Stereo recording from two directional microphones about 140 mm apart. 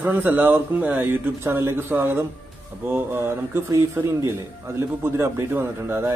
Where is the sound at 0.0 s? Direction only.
15° right (ahead or behind).